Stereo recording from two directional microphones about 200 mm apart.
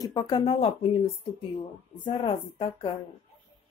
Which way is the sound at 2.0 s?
25° left (ahead or behind).